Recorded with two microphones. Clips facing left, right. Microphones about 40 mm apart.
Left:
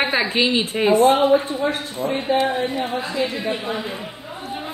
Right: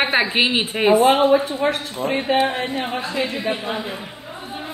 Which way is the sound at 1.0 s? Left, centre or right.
Right.